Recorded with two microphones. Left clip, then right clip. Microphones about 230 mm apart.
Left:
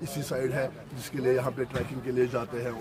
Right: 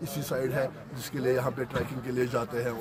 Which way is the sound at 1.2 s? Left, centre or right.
Centre.